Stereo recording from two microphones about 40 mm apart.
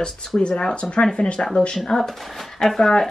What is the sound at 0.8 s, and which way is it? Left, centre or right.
Speech, left.